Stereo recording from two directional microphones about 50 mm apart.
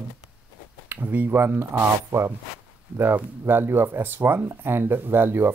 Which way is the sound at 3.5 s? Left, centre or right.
Right.